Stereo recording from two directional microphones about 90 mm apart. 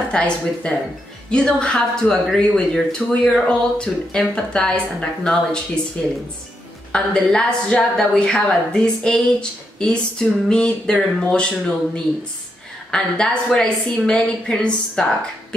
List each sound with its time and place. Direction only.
0.1 s a woman's voice: 10° left (ahead or behind)
6.9 s a woman's voice: 10° left (ahead or behind)
12.9 s a woman's voice: 10° left (ahead or behind)